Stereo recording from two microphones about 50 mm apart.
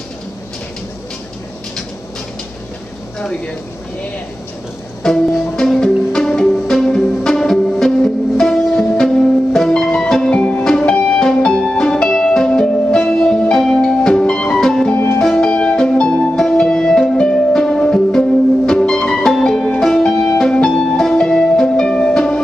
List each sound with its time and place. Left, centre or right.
5.1 s music: centre